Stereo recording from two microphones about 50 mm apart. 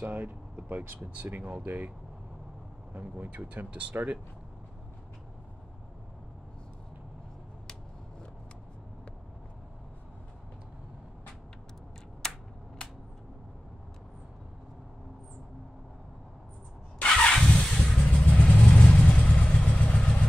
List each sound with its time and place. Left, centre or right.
0.0 s speech: right
2.9 s speech: right
12.2 s a sound: centre
17.1 s vehicle: centre